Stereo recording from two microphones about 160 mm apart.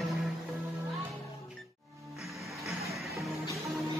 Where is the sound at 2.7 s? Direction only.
Centre (ahead or behind).